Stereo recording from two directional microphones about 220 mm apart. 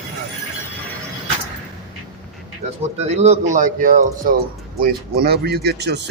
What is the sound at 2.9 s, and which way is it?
Speech, 30° right (ahead or behind).